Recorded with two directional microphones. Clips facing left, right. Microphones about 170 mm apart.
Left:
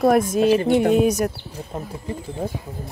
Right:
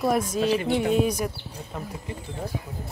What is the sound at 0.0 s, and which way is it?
Speech, 50° left (ahead or behind).